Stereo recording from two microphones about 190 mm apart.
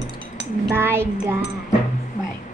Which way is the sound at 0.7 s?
10° right (ahead or behind).